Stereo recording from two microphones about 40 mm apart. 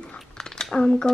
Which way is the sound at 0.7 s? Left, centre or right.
Left.